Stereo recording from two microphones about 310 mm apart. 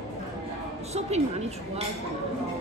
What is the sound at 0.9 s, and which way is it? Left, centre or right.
Speech, centre.